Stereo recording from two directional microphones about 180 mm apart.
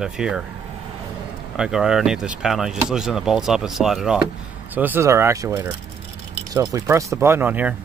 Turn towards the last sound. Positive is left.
turn(degrees=-10)  # may be behind; listen again after turning